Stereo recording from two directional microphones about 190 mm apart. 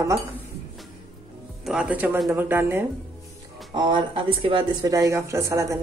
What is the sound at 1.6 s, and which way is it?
Speech, 5° right (ahead or behind).